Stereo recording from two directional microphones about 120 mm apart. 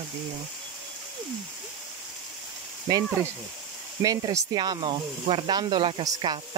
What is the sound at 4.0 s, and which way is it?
Speech, 30° right (ahead or behind).